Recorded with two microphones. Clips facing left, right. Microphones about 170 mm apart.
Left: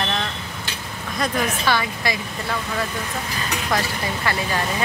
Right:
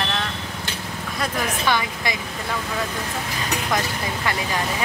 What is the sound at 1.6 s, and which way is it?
Speech, 15° right (ahead or behind).